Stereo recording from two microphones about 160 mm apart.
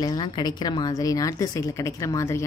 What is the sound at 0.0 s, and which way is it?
A woman's voice, 25° left (ahead or behind).